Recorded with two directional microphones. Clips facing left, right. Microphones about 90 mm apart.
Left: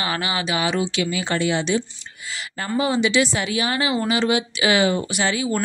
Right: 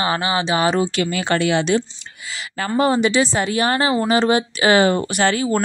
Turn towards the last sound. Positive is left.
turn(degrees=-50)  # may be behind; listen again after turning